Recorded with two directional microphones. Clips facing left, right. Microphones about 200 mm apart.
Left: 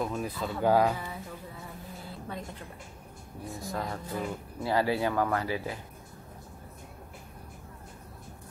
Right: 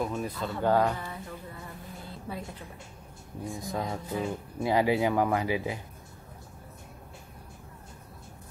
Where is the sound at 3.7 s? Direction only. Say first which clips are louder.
Right 2 dB; 15° right (ahead or behind).